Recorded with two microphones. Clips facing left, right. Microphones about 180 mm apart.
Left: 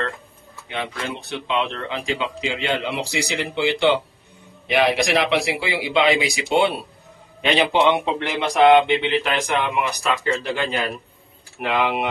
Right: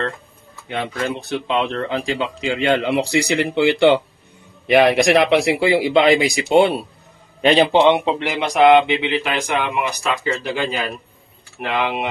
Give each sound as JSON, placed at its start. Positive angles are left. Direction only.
{"t": 1.3, "sound": "speech", "side_deg": -40}
{"t": 7.7, "sound": "speech", "side_deg": -25}